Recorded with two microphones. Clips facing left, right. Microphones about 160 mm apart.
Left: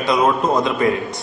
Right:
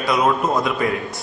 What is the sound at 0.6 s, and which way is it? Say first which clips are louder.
Speech: left 2 dB; 20° left (ahead or behind).